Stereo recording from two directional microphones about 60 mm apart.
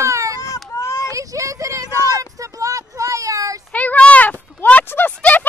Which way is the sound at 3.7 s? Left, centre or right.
Left.